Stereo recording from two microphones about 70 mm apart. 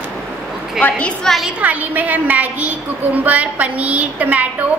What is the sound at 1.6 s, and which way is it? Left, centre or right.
A woman's voice, right.